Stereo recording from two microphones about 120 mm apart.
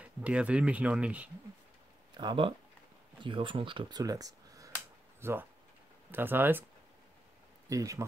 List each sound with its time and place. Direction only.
0.0 s speech: 10° right (ahead or behind)
2.1 s speech: 40° right (ahead or behind)
4.0 s a sound: 30° right (ahead or behind)
5.2 s speech: 20° right (ahead or behind)
7.7 s speech: 25° right (ahead or behind)